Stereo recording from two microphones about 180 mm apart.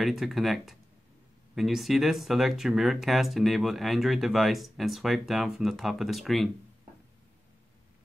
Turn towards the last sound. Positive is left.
turn(degrees=0)  # may be behind; listen again after turning